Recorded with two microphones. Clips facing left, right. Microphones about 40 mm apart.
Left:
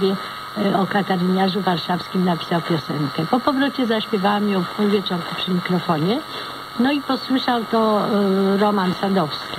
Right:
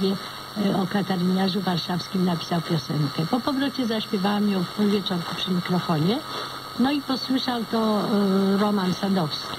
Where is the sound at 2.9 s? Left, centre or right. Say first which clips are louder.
Left 4 dB; centre.